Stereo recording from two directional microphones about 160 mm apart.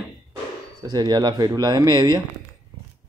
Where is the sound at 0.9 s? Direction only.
25° right (ahead or behind).